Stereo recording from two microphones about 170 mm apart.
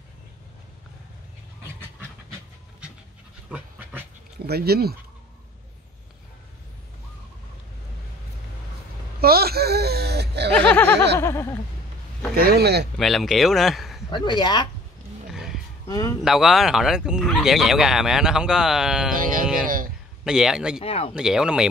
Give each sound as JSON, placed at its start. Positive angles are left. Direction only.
{"t": 3.4, "sound": "pant", "side_deg": -5}
{"t": 4.5, "sound": "speech", "side_deg": -65}
{"t": 9.2, "sound": "a sound", "side_deg": -65}
{"t": 10.5, "sound": "a sound", "side_deg": 10}
{"t": 12.4, "sound": "speech", "side_deg": -65}
{"t": 12.9, "sound": "speech", "side_deg": 0}
{"t": 14.1, "sound": "speech", "side_deg": 25}
{"t": 15.2, "sound": "roaring cats", "side_deg": -5}
{"t": 15.9, "sound": "speech", "side_deg": 20}
{"t": 16.3, "sound": "speech", "side_deg": 0}
{"t": 19.1, "sound": "a sound", "side_deg": -55}
{"t": 20.2, "sound": "speech", "side_deg": -5}
{"t": 20.8, "sound": "speech", "side_deg": 35}
{"t": 21.1, "sound": "speech", "side_deg": -5}